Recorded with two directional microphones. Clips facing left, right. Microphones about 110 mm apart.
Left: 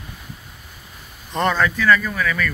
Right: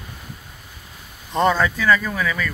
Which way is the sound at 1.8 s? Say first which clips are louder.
Left 1 dB; 25° right (ahead or behind).